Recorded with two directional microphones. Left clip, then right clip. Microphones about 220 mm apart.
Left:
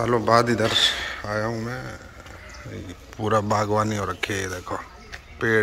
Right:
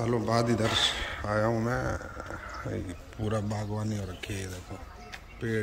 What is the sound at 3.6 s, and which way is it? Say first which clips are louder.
Speech: left 16 dB; 45° left (ahead or behind).